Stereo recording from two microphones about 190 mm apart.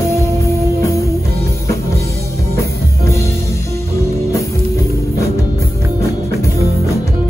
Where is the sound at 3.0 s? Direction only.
15° left (ahead or behind).